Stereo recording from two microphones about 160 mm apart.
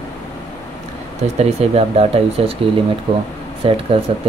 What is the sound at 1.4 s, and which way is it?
Speech, 40° right (ahead or behind).